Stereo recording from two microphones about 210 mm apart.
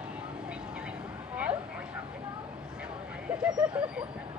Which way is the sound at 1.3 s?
5° right (ahead or behind).